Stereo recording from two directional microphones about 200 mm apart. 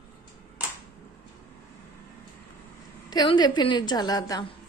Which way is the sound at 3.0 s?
20° left (ahead or behind).